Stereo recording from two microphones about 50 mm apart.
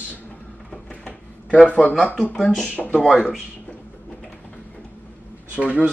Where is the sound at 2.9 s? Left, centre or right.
Centre.